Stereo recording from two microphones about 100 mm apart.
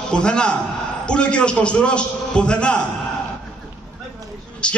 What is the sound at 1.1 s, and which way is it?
A man's voice, 10° left (ahead or behind).